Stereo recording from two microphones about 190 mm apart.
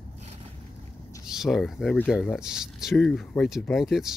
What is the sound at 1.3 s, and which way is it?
Speech, centre (ahead or behind).